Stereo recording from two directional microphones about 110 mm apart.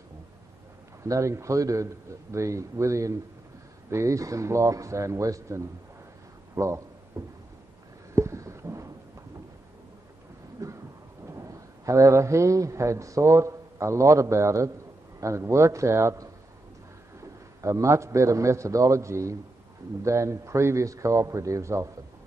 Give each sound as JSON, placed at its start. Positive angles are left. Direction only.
{"t": 1.0, "sound": "a man's voice", "side_deg": -30}
{"t": 6.5, "sound": "a sound", "side_deg": -25}
{"t": 10.6, "sound": "thunder", "side_deg": -30}
{"t": 11.2, "sound": "a man's voice", "side_deg": -30}